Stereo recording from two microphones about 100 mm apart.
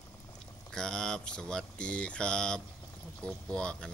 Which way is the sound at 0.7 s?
5° left (ahead or behind).